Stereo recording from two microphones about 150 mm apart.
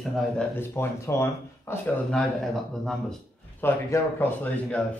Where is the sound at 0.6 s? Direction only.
15° left (ahead or behind).